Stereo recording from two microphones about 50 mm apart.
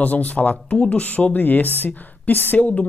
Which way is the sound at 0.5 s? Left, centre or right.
Left.